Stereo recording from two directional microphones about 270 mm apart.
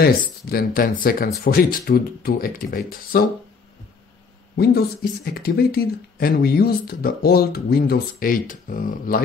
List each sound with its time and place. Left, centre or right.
0.0 s speech: left
5.2 s speech: left